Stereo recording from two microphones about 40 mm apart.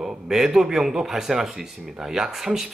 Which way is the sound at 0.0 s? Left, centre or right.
Centre.